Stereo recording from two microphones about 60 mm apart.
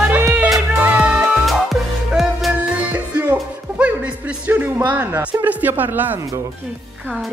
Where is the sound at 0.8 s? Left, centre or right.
Right.